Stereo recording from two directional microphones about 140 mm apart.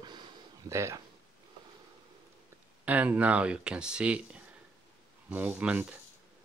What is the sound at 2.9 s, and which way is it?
Speech, 10° right (ahead or behind).